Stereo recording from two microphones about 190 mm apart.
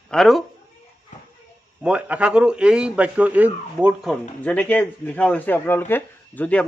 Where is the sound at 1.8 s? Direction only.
5° right (ahead or behind).